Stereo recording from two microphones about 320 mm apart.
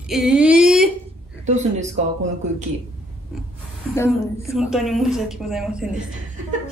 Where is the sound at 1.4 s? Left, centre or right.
Right.